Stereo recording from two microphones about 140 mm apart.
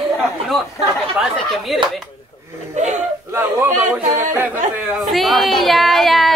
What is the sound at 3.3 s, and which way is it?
Speech, 15° right (ahead or behind).